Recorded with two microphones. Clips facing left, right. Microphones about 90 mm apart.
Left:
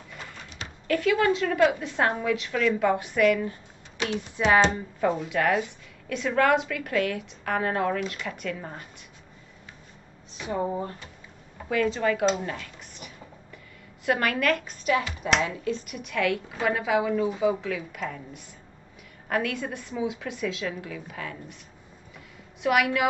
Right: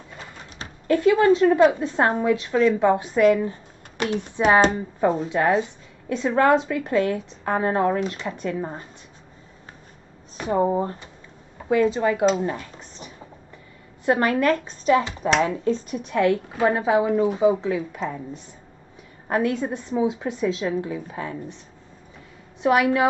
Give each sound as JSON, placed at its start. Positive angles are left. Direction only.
{"t": 0.6, "sound": "a woman's voice", "side_deg": -25}
{"t": 4.0, "sound": "speech", "side_deg": -45}
{"t": 4.6, "sound": "a woman's voice", "side_deg": -30}
{"t": 10.3, "sound": "speech", "side_deg": -40}
{"t": 10.7, "sound": "a woman's voice", "side_deg": -30}
{"t": 12.4, "sound": "a sound", "side_deg": -25}
{"t": 14.0, "sound": "a woman's voice", "side_deg": -30}
{"t": 22.6, "sound": "speech", "side_deg": -30}